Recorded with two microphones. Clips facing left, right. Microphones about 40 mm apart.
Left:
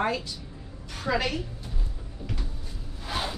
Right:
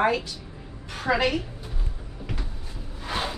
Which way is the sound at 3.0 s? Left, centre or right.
Centre.